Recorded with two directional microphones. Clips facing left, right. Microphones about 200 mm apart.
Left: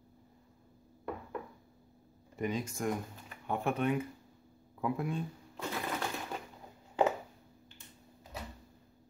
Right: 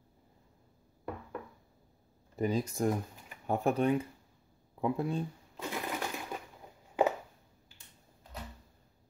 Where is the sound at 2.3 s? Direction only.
35° right (ahead or behind).